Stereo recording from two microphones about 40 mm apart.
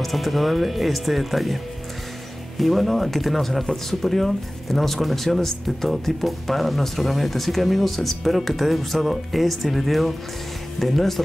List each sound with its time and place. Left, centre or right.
0.0 s speech: centre